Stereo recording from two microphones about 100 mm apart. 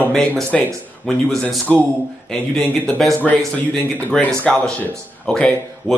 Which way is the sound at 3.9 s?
15° left (ahead or behind).